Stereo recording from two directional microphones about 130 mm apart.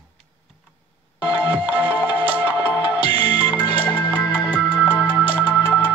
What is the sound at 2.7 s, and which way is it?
Music, 30° left (ahead or behind).